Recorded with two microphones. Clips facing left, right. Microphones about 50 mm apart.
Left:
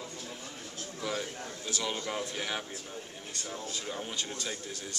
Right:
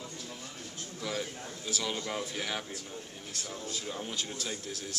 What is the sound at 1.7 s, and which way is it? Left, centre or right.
Speech, centre.